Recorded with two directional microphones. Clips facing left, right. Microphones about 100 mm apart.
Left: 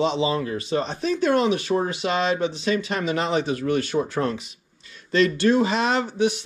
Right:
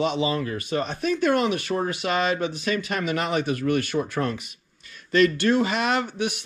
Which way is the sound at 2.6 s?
25° left (ahead or behind).